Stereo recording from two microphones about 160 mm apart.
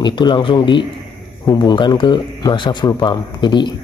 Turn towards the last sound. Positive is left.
turn(degrees=30)  # may be behind; listen again after turning